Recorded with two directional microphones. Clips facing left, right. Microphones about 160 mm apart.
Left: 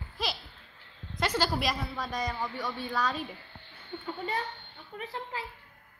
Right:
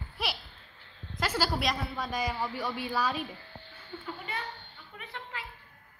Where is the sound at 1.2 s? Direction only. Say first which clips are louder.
Left 1 dB; 5° right (ahead or behind).